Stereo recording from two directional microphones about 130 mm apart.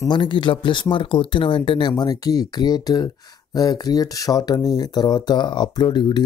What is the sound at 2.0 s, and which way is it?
Speech, 30° left (ahead or behind).